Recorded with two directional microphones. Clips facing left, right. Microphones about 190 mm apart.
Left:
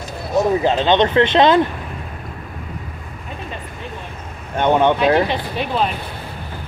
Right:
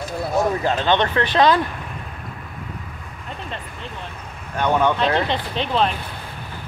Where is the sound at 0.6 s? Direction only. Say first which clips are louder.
Left 4 dB; 20° left (ahead or behind).